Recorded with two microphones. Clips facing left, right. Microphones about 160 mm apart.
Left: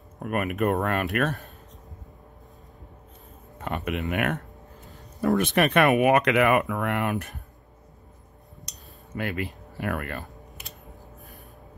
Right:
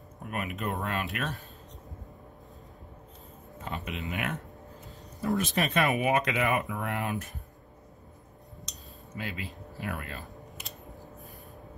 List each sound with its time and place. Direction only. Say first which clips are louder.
0.2 s speech: left 9 dB; 60° left (ahead or behind)
3.5 s a sound: left 7 dB; 60° left (ahead or behind)
4.1 s speech: left 5 dB; 60° left (ahead or behind)
8.6 s cutlery: even; 60° left (ahead or behind)